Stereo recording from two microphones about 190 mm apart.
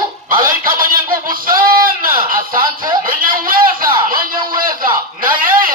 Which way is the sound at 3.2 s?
50° right (ahead or behind).